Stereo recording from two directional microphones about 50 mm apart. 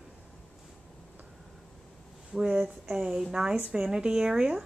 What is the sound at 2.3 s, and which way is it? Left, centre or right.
Speech, centre.